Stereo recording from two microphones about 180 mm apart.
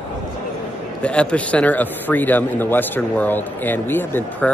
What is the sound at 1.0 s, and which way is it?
Speech, 5° left (ahead or behind).